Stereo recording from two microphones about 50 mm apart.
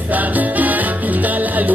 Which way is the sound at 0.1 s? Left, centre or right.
Right.